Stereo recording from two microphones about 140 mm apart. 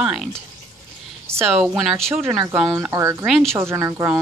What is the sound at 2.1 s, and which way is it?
A woman's voice, 15° right (ahead or behind).